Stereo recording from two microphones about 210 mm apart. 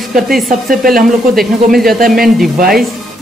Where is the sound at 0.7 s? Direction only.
45° right (ahead or behind).